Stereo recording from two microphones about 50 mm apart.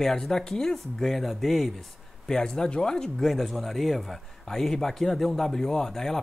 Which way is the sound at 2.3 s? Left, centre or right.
Centre.